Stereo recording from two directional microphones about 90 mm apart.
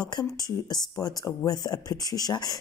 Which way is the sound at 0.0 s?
45° left (ahead or behind).